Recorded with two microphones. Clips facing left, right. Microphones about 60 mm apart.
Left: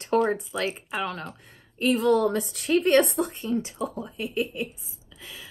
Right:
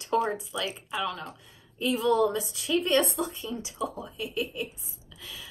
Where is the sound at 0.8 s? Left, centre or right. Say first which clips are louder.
Left 2 dB; left.